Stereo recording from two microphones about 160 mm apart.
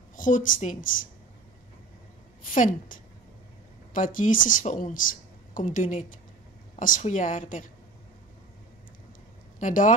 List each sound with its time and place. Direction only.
0.1 s speech: 55° left (ahead or behind)
2.4 s a woman's voice: 55° left (ahead or behind)
9.6 s speech: 55° left (ahead or behind)